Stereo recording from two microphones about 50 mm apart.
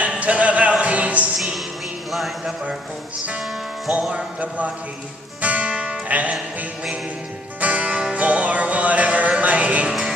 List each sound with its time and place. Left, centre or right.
0.0 s music: right
2.0 s speech: centre
4.4 s speech: right
5.4 s music: right
7.6 s music: right